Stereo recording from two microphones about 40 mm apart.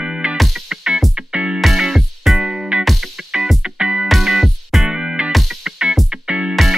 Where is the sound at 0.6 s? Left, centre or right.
Centre.